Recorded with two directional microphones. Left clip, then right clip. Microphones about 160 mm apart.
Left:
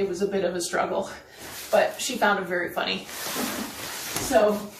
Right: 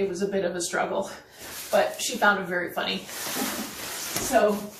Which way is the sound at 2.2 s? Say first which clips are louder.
Right 1 dB; 15° left (ahead or behind).